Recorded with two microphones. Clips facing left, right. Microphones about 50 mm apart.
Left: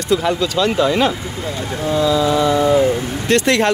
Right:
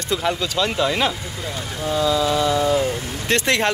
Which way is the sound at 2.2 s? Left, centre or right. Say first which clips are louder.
Left 4 dB; left.